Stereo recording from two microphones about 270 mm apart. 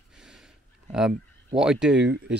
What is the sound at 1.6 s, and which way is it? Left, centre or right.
Speech, centre.